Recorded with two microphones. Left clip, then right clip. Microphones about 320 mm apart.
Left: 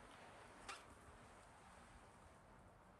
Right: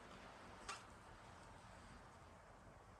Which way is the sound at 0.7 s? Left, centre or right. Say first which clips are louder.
Right 2 dB; centre.